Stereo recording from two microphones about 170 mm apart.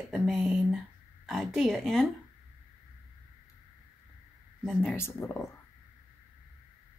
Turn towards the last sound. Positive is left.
turn(degrees=20)  # may be behind; listen again after turning